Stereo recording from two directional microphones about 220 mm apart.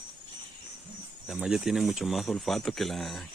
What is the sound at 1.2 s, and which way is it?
A man's voice, centre (ahead or behind).